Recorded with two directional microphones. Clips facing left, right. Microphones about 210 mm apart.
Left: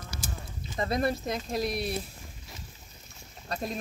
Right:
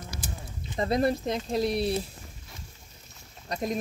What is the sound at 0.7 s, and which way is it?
Speech, 25° right (ahead or behind).